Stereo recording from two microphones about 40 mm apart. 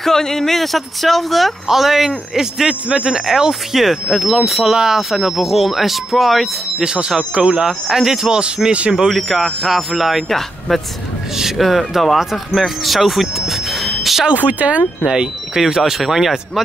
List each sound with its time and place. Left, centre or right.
0.0 s speech: centre
3.7 s speech: centre
6.8 s speech: centre
7.9 s speech: centre
8.3 s speech: right
9.1 s speech: centre
11.5 s speech: centre
14.4 s speech: right
15.0 s speech: centre
15.6 s speech: centre